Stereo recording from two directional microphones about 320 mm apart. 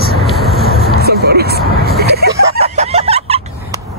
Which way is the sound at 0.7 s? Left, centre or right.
Left.